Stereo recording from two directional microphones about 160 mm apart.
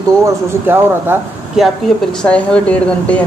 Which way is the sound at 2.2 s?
5° left (ahead or behind).